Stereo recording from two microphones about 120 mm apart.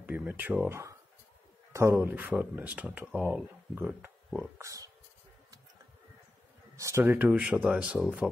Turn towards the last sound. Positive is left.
turn(degrees=-5)  # may be behind; listen again after turning